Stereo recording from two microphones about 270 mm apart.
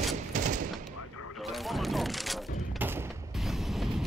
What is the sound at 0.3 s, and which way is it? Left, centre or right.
Fusillade, right.